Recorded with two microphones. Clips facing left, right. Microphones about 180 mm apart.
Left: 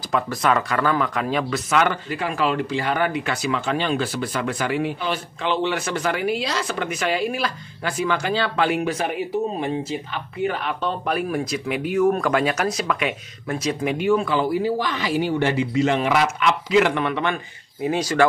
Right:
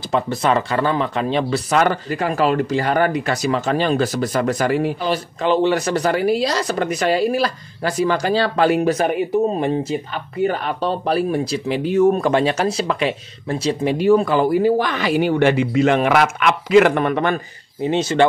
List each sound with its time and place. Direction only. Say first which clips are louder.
0.1 s speech: right 3 dB; 25° right (ahead or behind); by 17.4 s 45° right (ahead or behind)
17.8 s speech: right 3 dB; 25° right (ahead or behind)